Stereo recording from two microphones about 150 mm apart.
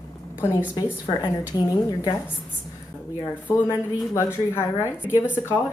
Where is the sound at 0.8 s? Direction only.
30° left (ahead or behind).